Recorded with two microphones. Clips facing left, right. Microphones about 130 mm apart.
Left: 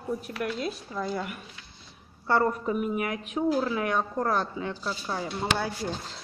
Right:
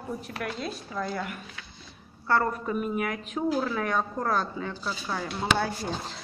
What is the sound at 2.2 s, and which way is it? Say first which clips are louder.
A woman's voice: left 1 dB; 20° left (ahead or behind).